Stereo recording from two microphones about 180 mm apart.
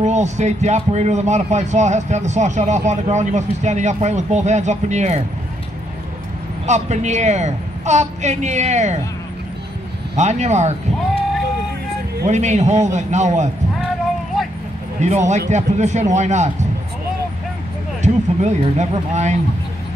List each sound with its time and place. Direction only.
0.0 s speech: 40° right (ahead or behind)
6.6 s speech: 40° right (ahead or behind)
10.1 s speech: 40° right (ahead or behind)
12.3 s speech: 40° right (ahead or behind)
15.0 s speech: 40° right (ahead or behind)
18.0 s speech: 40° right (ahead or behind)